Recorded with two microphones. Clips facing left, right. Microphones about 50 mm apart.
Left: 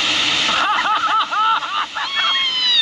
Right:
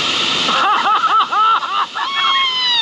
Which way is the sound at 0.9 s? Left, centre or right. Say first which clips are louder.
Right 4 dB; centre.